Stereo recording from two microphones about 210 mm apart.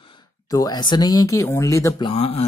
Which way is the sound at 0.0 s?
20° left (ahead or behind).